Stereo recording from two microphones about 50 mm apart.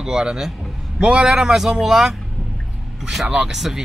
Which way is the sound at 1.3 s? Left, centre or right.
Centre.